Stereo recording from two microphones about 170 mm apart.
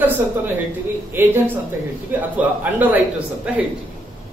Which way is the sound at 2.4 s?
10° right (ahead or behind).